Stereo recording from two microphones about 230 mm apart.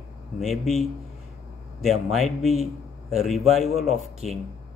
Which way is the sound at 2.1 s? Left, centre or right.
Centre.